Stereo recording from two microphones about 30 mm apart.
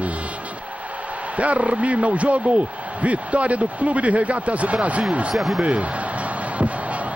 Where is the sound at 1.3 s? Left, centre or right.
Right.